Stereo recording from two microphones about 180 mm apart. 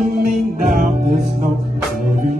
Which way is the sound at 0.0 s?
50° right (ahead or behind).